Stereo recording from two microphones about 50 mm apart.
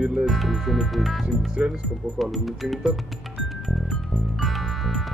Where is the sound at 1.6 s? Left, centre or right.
Right.